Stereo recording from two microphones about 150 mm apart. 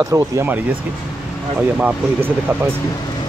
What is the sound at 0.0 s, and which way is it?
Speech, 15° right (ahead or behind).